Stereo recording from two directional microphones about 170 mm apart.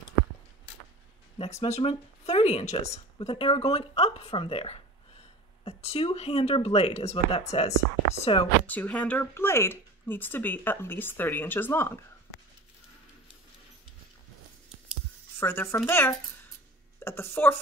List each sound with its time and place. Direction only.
1.4 s speech: 40° left (ahead or behind)
8.6 s speech: 10° left (ahead or behind)
15.3 s speech: 15° left (ahead or behind)